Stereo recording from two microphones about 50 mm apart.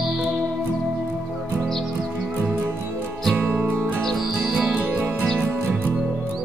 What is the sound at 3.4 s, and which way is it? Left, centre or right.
Music, right.